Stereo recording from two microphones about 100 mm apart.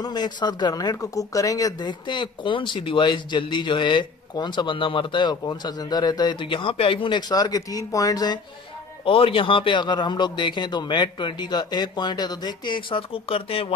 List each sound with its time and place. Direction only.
0.0 s speech: 45° left (ahead or behind)
9.0 s speech: 65° left (ahead or behind)